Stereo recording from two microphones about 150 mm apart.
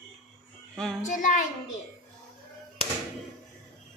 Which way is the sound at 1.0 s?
60° left (ahead or behind).